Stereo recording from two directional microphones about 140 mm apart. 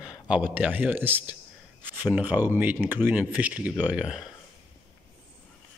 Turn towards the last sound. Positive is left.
turn(degrees=-5)  # may be behind; listen again after turning